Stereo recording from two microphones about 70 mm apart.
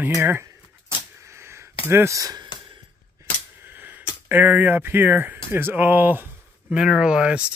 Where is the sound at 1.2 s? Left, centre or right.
Right.